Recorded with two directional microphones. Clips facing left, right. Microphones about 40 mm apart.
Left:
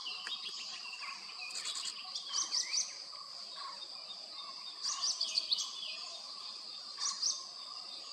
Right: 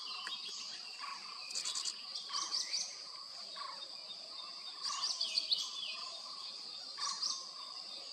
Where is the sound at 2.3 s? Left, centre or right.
Centre.